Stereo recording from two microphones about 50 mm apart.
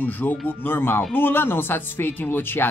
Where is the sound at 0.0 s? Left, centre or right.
Left.